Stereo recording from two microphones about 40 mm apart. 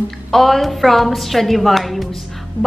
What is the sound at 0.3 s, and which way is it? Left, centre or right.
A woman's voice, centre.